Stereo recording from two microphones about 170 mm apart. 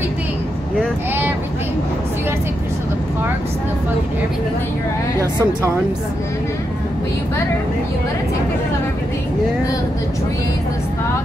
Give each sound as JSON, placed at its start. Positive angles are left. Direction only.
{"t": 5.2, "sound": "speech", "side_deg": -20}